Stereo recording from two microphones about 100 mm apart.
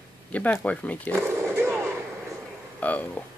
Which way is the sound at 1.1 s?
25° right (ahead or behind).